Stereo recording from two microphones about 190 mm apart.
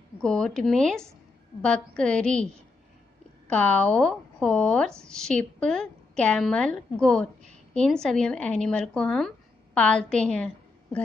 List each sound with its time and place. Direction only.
0.2 s speech: 5° left (ahead or behind)
3.4 s a woman's voice: 5° left (ahead or behind)